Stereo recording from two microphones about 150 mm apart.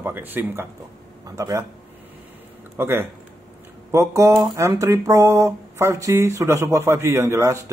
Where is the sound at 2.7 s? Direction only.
15° right (ahead or behind).